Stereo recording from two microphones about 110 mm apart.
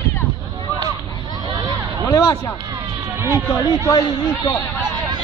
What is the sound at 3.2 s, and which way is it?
Speech, 20° right (ahead or behind).